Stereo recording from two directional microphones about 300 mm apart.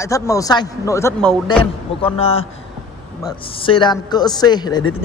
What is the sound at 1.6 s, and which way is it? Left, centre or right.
A man's voice, centre.